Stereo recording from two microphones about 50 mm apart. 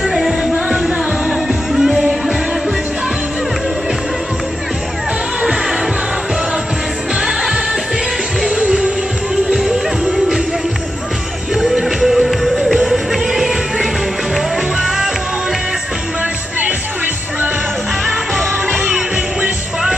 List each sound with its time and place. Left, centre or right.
0.0 s music: centre
7.2 s music: centre
11.5 s music: centre
18.9 s music: centre